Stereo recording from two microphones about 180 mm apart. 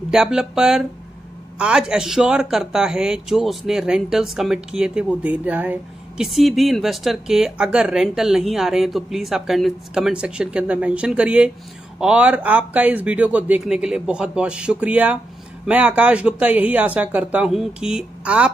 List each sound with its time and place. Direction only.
0.1 s a man's voice: 5° right (ahead or behind)